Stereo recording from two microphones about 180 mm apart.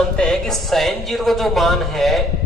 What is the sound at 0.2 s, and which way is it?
Speech, 5° left (ahead or behind).